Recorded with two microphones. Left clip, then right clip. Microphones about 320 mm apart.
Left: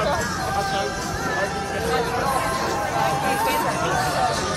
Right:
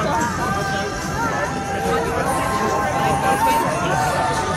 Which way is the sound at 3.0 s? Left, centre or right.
Right.